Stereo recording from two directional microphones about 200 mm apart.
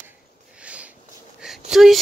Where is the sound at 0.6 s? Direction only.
5° right (ahead or behind).